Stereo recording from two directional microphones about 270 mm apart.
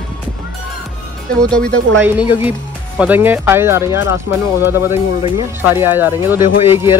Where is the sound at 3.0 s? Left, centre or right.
Centre.